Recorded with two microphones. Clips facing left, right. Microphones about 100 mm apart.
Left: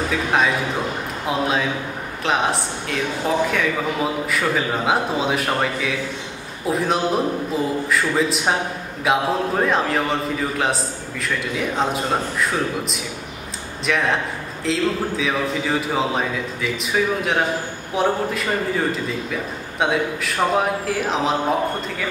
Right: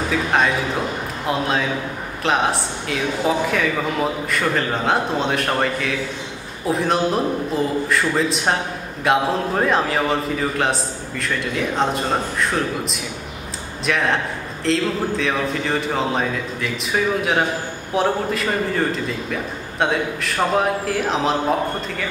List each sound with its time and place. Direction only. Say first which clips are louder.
0.1 s a man's voice: right 2 dB; centre (ahead or behind)